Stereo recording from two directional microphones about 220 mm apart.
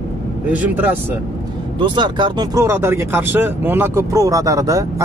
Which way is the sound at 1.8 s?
20° right (ahead or behind).